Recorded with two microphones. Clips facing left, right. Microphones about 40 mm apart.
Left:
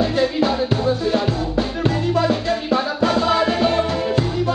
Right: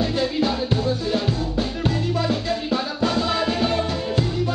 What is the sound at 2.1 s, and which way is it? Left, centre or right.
Music, centre.